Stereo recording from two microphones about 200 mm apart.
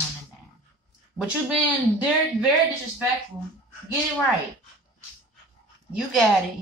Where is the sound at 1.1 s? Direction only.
20° left (ahead or behind).